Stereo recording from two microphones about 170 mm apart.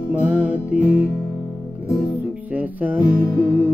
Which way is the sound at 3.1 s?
20° left (ahead or behind).